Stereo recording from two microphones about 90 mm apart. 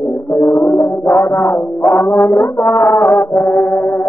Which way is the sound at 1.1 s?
35° left (ahead or behind).